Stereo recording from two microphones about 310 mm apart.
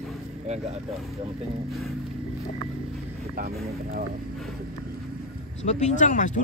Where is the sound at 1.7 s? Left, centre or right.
Centre.